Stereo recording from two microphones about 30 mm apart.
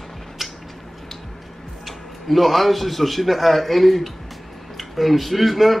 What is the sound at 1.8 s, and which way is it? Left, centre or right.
A man's voice, centre.